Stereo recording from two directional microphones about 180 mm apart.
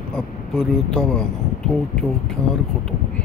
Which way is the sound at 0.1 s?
5° left (ahead or behind).